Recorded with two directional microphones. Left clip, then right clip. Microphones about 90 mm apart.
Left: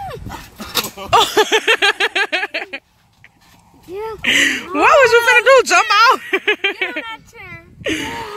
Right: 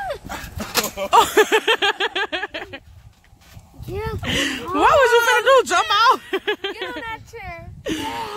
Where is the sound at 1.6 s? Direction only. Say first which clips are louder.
Left 5 dB; 10° left (ahead or behind).